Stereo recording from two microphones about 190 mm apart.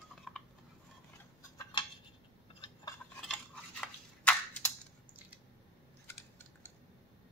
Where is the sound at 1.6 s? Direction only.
25° left (ahead or behind).